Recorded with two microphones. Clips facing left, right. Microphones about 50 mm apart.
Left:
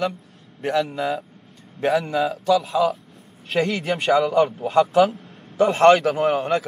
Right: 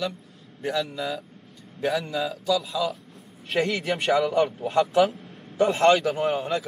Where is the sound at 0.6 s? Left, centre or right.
Left.